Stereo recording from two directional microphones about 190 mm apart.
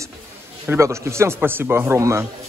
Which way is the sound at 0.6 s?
15° right (ahead or behind).